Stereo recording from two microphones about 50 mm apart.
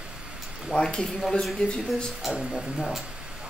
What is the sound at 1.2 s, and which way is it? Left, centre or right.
Speech, centre.